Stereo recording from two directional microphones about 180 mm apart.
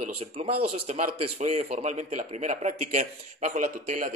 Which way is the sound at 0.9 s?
40° right (ahead or behind).